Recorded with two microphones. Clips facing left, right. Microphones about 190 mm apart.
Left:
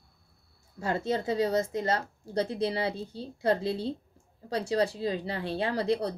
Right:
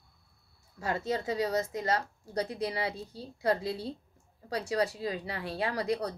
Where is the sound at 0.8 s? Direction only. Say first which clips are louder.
Left 3 dB; 30° left (ahead or behind).